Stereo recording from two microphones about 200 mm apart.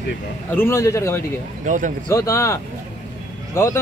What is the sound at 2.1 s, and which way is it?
Speech, 15° left (ahead or behind).